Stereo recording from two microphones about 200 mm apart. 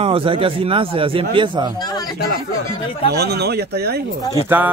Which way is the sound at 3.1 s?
55° right (ahead or behind).